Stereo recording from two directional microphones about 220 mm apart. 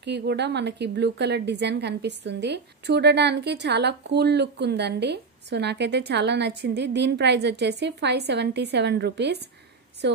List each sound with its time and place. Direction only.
0.0 s a woman's voice: 50° right (ahead or behind)